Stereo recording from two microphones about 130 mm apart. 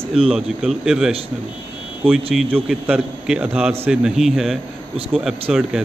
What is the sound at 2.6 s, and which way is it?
A man's voice, 5° right (ahead or behind).